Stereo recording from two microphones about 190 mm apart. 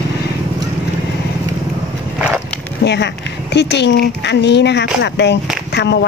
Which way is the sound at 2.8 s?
65° left (ahead or behind).